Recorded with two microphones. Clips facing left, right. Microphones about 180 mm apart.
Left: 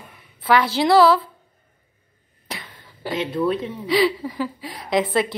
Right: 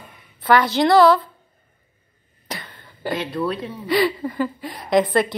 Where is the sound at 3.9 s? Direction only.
Centre (ahead or behind).